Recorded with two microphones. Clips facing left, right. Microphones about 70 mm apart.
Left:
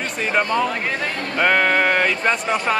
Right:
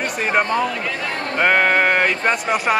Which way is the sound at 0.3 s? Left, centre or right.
Right.